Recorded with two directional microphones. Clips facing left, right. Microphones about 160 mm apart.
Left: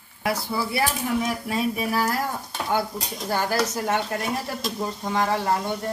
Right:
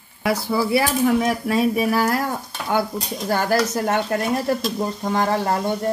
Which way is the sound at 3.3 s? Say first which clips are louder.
Right 4 dB; 55° right (ahead or behind).